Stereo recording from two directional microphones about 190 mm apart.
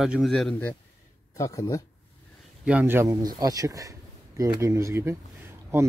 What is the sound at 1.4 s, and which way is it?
Speech, 15° left (ahead or behind).